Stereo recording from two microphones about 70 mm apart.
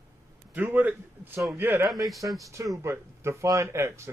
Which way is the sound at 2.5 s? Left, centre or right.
Right.